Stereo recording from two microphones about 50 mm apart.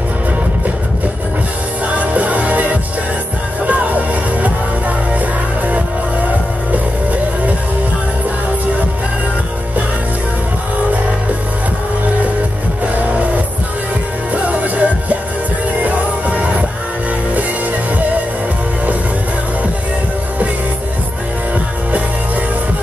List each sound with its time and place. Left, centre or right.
2.0 s music: right
14.3 s music: right